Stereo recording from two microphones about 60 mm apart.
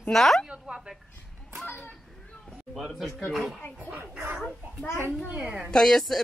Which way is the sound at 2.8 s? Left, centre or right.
Centre.